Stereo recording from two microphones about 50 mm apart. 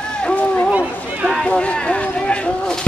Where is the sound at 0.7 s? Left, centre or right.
Right.